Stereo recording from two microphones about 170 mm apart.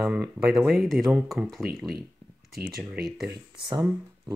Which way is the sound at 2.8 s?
10° right (ahead or behind).